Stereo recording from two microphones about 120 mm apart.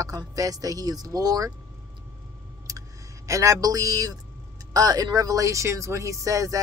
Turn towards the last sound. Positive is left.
turn(degrees=-25)  # may be behind; listen again after turning